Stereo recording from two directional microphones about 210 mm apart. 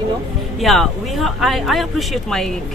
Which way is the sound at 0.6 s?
Centre (ahead or behind).